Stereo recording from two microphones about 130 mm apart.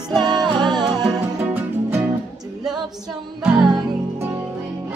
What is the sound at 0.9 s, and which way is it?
Music, 10° right (ahead or behind).